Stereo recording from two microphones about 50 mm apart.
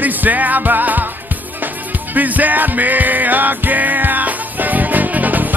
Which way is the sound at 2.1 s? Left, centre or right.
Right.